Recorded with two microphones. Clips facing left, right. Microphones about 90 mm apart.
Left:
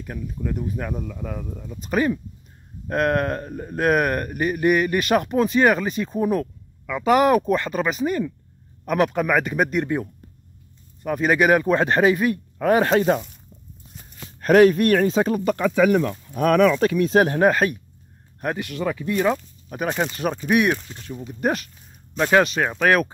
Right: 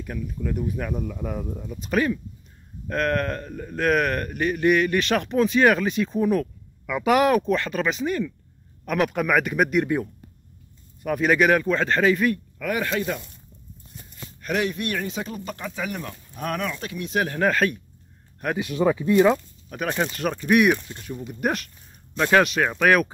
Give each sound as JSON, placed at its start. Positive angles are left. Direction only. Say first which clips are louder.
{"t": 0.0, "sound": "speech", "louder": "even", "side_deg": 5}
{"t": 1.8, "sound": "speech", "louder": "left 2 dB", "side_deg": 5}
{"t": 3.8, "sound": "speech", "louder": "left 2 dB", "side_deg": 10}
{"t": 12.5, "sound": "speech", "louder": "left 8 dB", "side_deg": 35}
{"t": 14.4, "sound": "speech", "louder": "left 12 dB", "side_deg": 50}
{"t": 15.3, "sound": "speech", "louder": "left 12 dB", "side_deg": 75}
{"t": 16.3, "sound": "speech", "louder": "left 11 dB", "side_deg": 90}
{"t": 17.2, "sound": "speech", "louder": "left 4 dB", "side_deg": 30}
{"t": 17.5, "sound": "speech", "louder": "left 3 dB", "side_deg": 10}
{"t": 18.6, "sound": "speech", "louder": "right 4 dB", "side_deg": -15}
{"t": 19.7, "sound": "speech", "louder": "left 2 dB", "side_deg": 10}
{"t": 22.1, "sound": "speech", "louder": "left 1 dB", "side_deg": 10}